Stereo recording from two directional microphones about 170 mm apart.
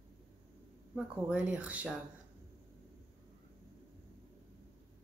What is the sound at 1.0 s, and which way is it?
Speech, 5° right (ahead or behind).